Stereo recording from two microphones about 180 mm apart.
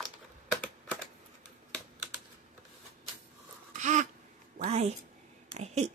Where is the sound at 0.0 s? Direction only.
Centre (ahead or behind).